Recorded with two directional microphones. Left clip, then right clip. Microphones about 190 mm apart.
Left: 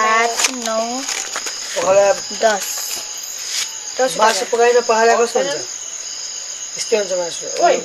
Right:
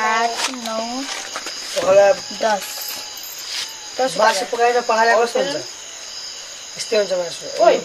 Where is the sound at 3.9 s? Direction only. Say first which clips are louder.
Left 2 dB; 55° left (ahead or behind).